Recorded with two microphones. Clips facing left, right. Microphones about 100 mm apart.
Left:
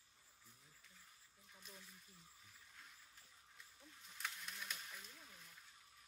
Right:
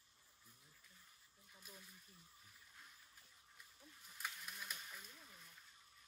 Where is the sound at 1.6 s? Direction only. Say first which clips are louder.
Even; 5° right (ahead or behind).